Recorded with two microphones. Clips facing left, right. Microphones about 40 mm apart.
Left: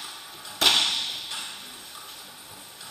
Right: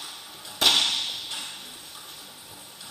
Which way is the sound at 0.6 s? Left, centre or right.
Left.